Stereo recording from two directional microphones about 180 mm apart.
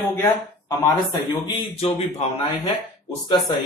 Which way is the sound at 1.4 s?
30° left (ahead or behind).